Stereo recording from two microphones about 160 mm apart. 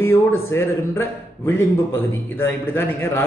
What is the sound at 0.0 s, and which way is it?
Speech, 15° left (ahead or behind).